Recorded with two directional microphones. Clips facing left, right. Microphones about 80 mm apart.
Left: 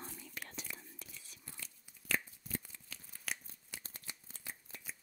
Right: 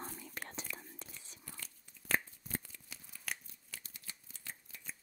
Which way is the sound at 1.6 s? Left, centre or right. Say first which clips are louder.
Right 1 dB; right.